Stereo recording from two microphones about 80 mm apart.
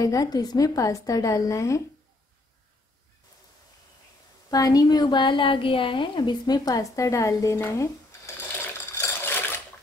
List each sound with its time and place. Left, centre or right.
0.0 s a woman's voice: left
4.5 s a woman's voice: left
8.9 s water: left